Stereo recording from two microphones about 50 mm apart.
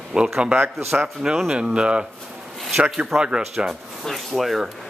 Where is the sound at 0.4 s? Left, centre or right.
Right.